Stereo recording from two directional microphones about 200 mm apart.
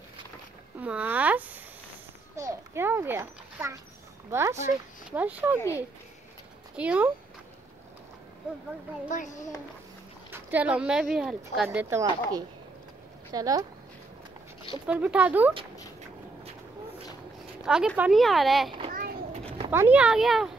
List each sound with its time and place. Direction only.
0.7 s a sound: 5° right (ahead or behind)
4.3 s speech: 15° right (ahead or behind)
6.8 s speech: 5° right (ahead or behind)
9.1 s a child's voice: 40° left (ahead or behind)
10.3 s speech: 10° right (ahead or behind)
14.9 s speech: 5° right (ahead or behind)
17.6 s speech: 5° right (ahead or behind)
18.9 s children playing: 45° right (ahead or behind)
19.7 s speech: 10° right (ahead or behind)